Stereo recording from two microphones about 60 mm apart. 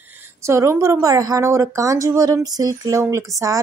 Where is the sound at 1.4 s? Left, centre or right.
Right.